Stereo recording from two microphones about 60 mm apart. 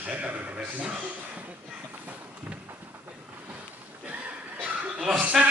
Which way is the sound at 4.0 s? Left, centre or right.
Right.